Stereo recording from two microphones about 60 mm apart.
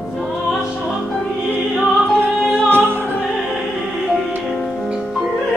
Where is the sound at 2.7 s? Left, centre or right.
Right.